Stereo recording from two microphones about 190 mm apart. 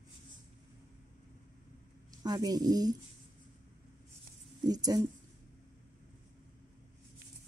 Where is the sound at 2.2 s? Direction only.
20° right (ahead or behind).